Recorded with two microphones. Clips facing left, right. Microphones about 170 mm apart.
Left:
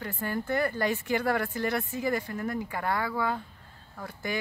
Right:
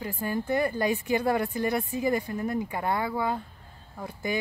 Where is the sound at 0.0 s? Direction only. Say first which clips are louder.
Right 2 dB; 15° right (ahead or behind).